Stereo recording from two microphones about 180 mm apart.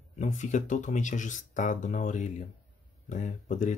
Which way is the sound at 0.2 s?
45° left (ahead or behind).